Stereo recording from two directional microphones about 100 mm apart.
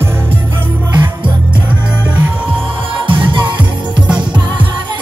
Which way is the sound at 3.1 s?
50° right (ahead or behind).